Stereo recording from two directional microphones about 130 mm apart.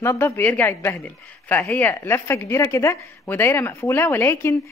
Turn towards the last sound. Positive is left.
turn(degrees=20)  # may be behind; listen again after turning